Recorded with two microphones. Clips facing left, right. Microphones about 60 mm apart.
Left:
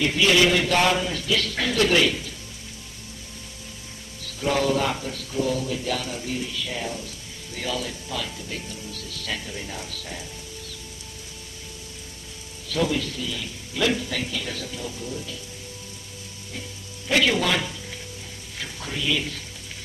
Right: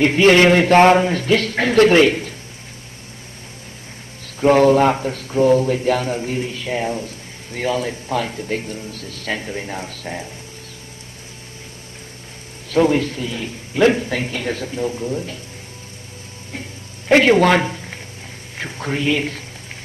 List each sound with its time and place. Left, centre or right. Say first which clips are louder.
0.0 s speech: right 8 dB; right
4.2 s speech: right 11 dB; right
12.6 s speech: right 9 dB; right
17.1 s a man's voice: right 9 dB; right